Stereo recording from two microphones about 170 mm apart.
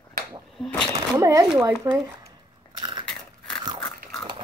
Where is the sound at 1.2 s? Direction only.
15° right (ahead or behind).